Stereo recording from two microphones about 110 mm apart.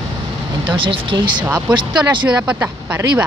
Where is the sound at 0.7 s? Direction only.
50° right (ahead or behind).